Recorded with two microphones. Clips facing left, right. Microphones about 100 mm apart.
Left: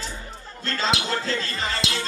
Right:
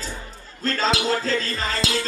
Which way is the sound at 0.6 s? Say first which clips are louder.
Right 3 dB; 40° right (ahead or behind).